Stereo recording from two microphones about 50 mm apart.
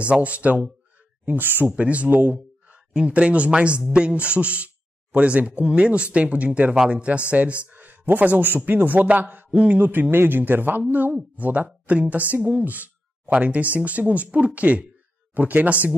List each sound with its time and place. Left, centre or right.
0.0 s speech: right
1.2 s speech: right
1.8 s a man's voice: right
12.4 s speech: right
12.6 s speech: right